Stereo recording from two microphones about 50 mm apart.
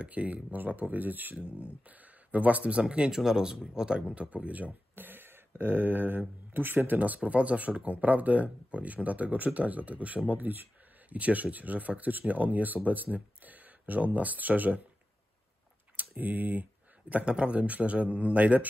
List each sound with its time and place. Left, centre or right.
0.0 s a man's voice: right
4.9 s speech: right
7.2 s speech: right
16.0 s speech: right
17.1 s a man's voice: right